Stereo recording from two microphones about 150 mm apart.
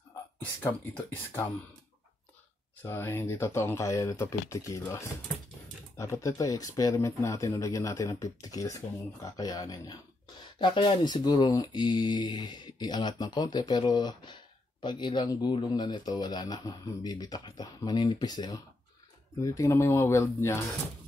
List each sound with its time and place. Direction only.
0.6 s speech: 15° left (ahead or behind)
2.8 s speech: 15° left (ahead or behind)